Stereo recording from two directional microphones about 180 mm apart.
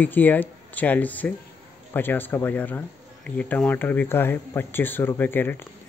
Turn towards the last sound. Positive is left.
turn(degrees=10)  # may be behind; listen again after turning